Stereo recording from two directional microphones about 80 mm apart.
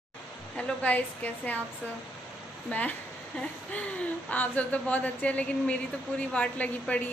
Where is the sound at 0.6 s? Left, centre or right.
Centre.